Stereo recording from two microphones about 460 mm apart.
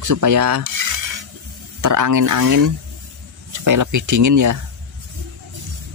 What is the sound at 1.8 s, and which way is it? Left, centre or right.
Speech, right.